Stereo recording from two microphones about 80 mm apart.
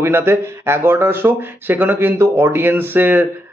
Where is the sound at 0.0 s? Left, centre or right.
Right.